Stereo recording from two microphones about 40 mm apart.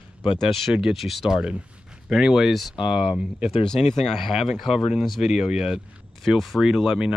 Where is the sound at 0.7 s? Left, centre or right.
Centre.